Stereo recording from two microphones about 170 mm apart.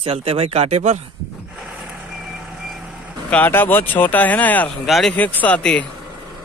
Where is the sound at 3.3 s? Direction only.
10° left (ahead or behind).